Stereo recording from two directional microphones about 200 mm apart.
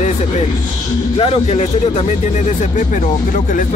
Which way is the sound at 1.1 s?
30° left (ahead or behind).